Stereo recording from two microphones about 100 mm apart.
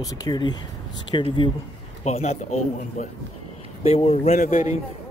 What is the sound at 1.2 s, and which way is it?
Speech, 55° left (ahead or behind).